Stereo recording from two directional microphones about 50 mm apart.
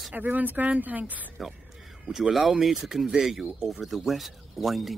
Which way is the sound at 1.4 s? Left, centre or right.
Centre.